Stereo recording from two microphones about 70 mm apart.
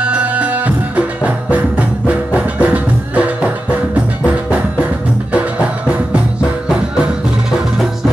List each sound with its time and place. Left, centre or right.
0.0 s music: centre